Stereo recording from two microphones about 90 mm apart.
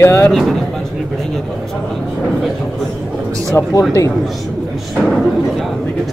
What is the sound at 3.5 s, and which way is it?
Speech, 30° left (ahead or behind).